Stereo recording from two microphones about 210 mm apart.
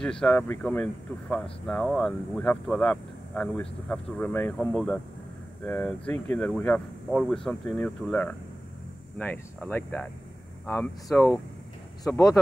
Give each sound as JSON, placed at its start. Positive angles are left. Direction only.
{"t": 0.0, "sound": "speech", "side_deg": 5}